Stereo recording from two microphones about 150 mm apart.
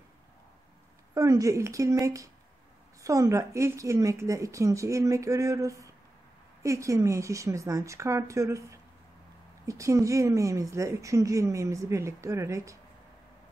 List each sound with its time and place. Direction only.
1.1 s a woman's voice: 20° right (ahead or behind)